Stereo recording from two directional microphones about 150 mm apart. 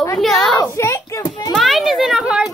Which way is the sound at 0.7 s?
20° left (ahead or behind).